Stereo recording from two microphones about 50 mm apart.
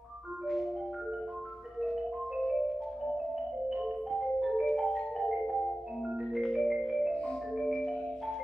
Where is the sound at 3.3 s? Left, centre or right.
Centre.